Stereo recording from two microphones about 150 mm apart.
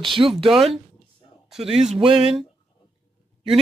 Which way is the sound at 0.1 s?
35° right (ahead or behind).